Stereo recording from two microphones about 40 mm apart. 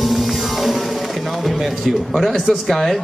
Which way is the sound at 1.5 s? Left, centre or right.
Centre.